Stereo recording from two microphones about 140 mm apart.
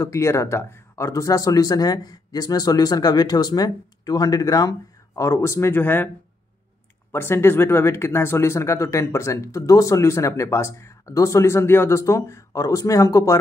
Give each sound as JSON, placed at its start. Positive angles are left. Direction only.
{"t": 0.0, "sound": "speech", "side_deg": 20}
{"t": 7.1, "sound": "speech", "side_deg": 15}